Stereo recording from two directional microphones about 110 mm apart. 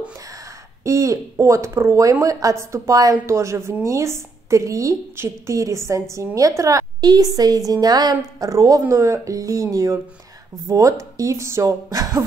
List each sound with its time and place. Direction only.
0.8 s a woman's voice: 30° right (ahead or behind)